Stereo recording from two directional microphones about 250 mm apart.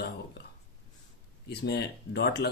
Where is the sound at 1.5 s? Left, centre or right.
Left.